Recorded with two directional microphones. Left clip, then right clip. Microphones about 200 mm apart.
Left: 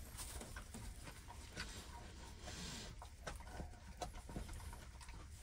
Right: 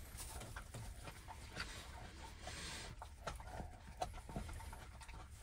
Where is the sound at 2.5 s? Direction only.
30° left (ahead or behind).